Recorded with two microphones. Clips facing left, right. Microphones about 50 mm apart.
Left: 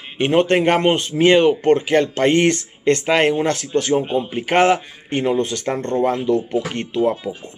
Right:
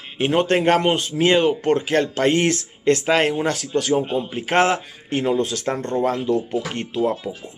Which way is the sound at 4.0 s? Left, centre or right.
Centre.